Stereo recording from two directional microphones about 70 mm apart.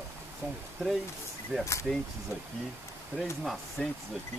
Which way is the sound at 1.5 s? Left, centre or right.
Centre.